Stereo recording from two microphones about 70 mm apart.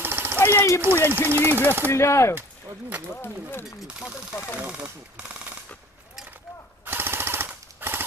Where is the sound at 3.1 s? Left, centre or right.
Left.